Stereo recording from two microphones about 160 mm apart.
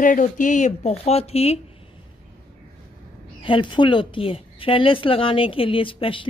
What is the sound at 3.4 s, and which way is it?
Speech, 30° left (ahead or behind).